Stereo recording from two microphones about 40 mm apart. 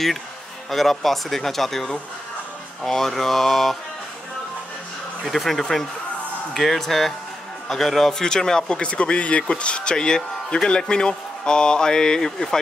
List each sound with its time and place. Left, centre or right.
0.7 s speech: centre
5.2 s speech: centre